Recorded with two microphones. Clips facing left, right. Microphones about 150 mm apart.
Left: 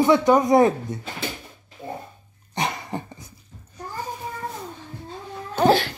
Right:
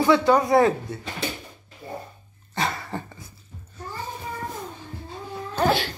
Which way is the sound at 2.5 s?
20° left (ahead or behind).